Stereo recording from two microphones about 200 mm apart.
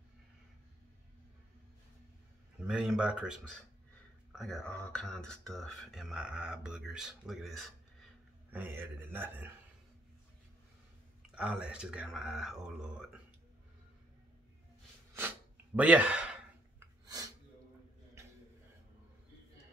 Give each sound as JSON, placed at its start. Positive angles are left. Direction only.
{"t": 2.6, "sound": "a man's voice", "side_deg": -5}
{"t": 11.3, "sound": "speech", "side_deg": -5}
{"t": 15.1, "sound": "gasp", "side_deg": -10}
{"t": 16.8, "sound": "a sound", "side_deg": -20}